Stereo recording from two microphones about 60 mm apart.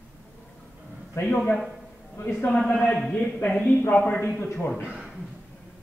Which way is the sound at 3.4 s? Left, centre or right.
Left.